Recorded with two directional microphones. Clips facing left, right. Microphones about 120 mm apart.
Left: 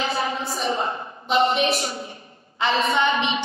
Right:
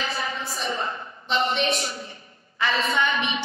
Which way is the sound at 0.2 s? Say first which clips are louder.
Left 5 dB; 30° left (ahead or behind).